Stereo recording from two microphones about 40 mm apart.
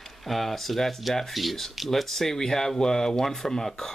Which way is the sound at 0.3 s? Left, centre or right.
Centre.